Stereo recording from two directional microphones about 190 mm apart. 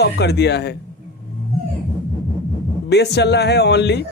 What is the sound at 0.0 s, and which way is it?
Speech, 60° left (ahead or behind).